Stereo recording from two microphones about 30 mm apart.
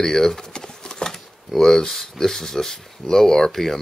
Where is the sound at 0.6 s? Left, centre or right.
Left.